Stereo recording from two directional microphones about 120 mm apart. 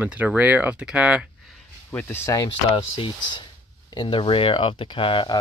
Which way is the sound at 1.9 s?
20° left (ahead or behind).